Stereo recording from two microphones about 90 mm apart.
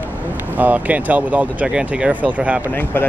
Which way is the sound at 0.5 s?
20° right (ahead or behind).